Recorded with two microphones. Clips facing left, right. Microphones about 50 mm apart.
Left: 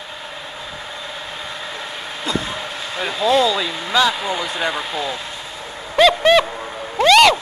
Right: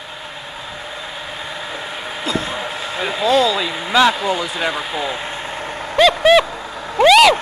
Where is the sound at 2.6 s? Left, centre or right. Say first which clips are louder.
Right 2 dB; centre.